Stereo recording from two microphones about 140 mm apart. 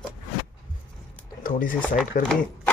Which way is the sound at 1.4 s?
80° left.